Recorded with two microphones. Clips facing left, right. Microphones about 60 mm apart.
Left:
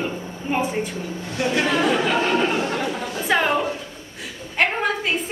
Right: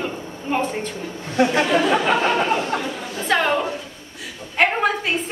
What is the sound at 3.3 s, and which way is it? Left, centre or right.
Speech, centre.